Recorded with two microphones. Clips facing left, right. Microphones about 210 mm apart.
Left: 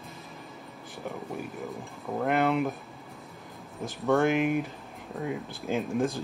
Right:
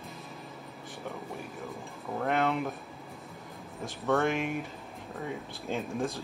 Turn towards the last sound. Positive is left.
turn(degrees=0)  # may be behind; listen again after turning